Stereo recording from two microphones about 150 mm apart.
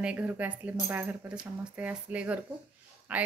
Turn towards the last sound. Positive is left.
turn(degrees=-10)  # may be behind; listen again after turning